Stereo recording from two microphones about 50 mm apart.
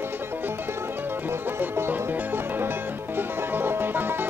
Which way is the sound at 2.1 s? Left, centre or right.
Right.